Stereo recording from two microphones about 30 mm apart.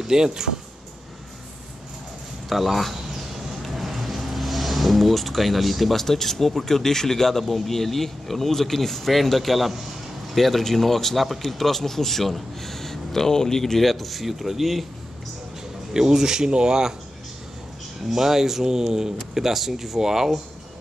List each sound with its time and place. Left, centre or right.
0.1 s speech: right
2.5 s speech: centre
3.6 s vehicle: centre
6.0 s speech: centre
15.9 s speech: centre
16.4 s speech: right
18.1 s speech: centre